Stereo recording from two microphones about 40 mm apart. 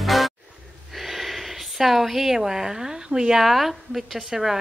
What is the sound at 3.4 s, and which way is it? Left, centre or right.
Speech, centre.